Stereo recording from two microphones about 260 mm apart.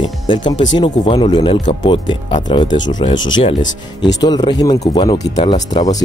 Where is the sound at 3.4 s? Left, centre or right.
Left.